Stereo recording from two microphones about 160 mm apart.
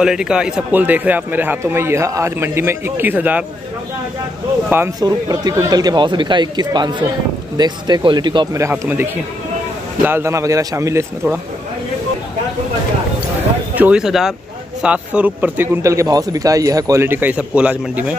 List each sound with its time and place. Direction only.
0.0 s a man's voice: 5° right (ahead or behind)
4.6 s a man's voice: 15° right (ahead or behind)
5.0 s speech: 25° right (ahead or behind)
8.5 s a man's voice: 15° right (ahead or behind)
13.7 s a man's voice: 5° right (ahead or behind)